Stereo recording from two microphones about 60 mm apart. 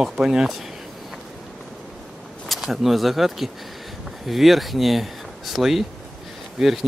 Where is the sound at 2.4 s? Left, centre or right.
Centre.